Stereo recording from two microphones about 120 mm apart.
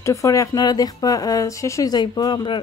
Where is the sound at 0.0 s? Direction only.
25° left (ahead or behind).